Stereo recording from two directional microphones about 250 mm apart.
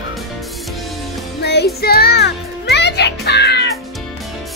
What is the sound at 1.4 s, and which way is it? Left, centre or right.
Music, left.